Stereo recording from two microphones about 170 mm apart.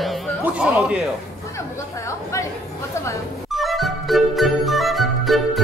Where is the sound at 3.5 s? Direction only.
Centre (ahead or behind).